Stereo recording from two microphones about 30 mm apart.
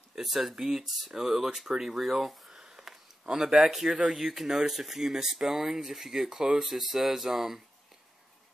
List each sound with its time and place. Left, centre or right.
0.1 s speech: centre
2.9 s a sound: centre
3.3 s speech: right
3.7 s speech: centre
6.6 s speech: centre